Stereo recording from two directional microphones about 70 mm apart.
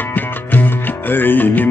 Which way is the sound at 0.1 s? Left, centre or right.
Left.